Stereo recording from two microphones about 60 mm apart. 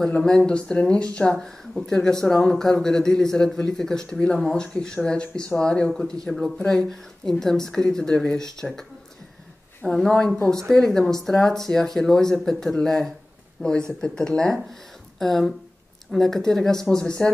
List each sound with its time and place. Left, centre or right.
0.1 s a man's voice: centre
9.8 s a man's voice: centre